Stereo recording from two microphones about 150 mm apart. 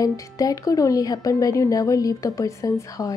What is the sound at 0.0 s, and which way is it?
A woman's voice, 25° left (ahead or behind).